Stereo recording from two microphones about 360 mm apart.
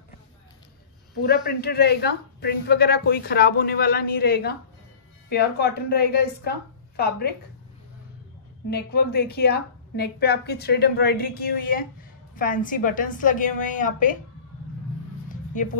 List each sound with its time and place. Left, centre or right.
1.1 s speech: left
8.6 s speech: left
15.2 s a sound: left